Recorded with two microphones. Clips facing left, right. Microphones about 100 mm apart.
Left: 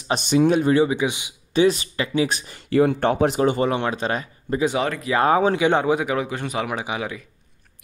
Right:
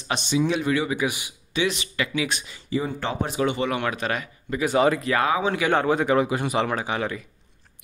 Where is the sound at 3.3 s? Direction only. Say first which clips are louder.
Left 4 dB; 40° left (ahead or behind).